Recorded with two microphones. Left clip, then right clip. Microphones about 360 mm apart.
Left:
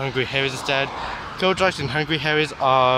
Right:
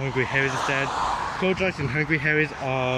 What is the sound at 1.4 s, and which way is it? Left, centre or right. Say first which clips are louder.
Speech: left 8 dB; left.